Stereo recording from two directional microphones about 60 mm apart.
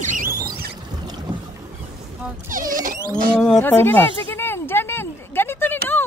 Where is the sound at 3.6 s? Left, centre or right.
Left.